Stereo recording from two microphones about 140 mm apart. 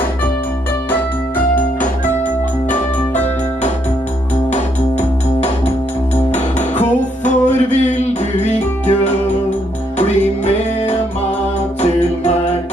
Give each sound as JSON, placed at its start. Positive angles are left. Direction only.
{"t": 7.2, "sound": "music", "side_deg": 55}